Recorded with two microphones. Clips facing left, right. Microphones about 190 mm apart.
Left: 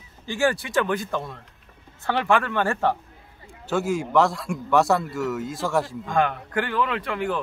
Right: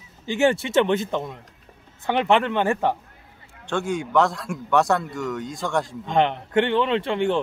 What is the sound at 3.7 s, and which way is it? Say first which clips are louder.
A man's voice: left 1 dB; 5° left (ahead or behind).